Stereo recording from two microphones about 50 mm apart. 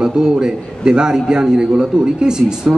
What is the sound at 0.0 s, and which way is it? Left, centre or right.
A man's voice, centre.